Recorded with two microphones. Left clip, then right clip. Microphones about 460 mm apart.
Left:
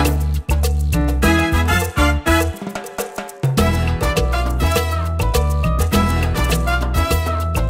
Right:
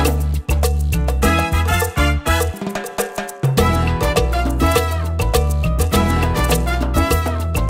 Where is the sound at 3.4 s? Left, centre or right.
Right.